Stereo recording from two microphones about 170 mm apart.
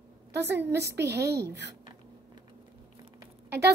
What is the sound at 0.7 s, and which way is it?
Speech, 80° right.